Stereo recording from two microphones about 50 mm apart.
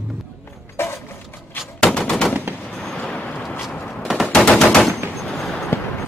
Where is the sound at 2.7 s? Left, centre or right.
Centre.